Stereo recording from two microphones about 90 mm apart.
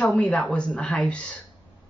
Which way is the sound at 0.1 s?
15° left (ahead or behind).